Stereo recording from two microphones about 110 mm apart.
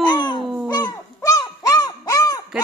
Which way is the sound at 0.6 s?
30° left (ahead or behind).